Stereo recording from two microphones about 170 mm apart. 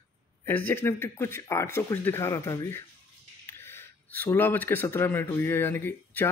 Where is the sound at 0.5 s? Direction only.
10° left (ahead or behind).